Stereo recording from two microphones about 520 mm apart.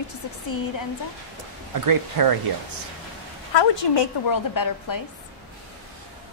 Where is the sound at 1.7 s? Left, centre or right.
Right.